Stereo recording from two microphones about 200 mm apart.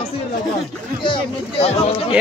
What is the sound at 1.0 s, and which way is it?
Speech, 25° left (ahead or behind).